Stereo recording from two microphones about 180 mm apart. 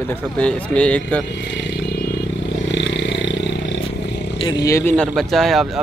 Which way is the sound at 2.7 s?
75° left (ahead or behind).